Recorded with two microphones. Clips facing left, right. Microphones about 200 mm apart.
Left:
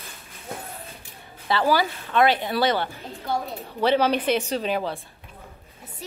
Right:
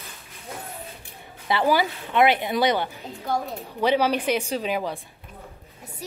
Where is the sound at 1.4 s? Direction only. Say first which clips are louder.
Even; 20° right (ahead or behind).